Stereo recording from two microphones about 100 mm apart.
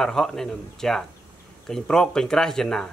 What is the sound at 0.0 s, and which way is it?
Speech, 5° left (ahead or behind).